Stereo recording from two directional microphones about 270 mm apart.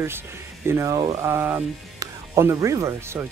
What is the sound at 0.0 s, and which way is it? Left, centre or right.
Speech, centre.